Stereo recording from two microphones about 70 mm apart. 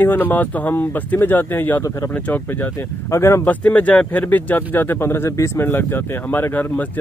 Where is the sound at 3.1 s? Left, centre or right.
Left.